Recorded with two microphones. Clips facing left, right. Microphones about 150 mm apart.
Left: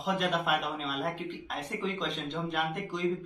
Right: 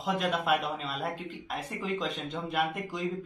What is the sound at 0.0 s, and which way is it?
Speech, centre (ahead or behind).